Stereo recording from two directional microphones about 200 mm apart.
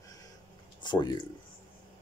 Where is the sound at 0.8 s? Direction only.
20° left (ahead or behind).